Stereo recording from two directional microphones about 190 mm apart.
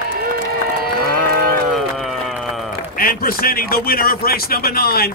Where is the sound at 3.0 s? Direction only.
50° left (ahead or behind).